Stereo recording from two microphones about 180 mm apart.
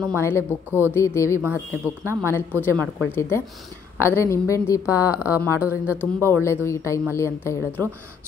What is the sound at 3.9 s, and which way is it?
A woman's voice, 15° left (ahead or behind).